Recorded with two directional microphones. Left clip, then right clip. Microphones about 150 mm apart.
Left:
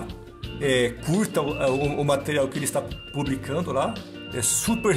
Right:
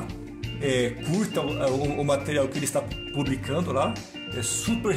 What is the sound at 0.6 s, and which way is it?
Speech, 30° left (ahead or behind).